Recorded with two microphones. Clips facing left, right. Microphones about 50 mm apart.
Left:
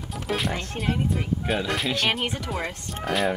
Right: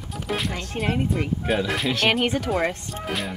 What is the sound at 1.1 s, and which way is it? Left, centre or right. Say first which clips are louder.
Speech: right 2 dB; centre.